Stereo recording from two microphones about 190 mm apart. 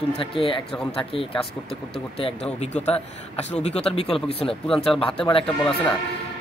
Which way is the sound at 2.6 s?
35° left (ahead or behind).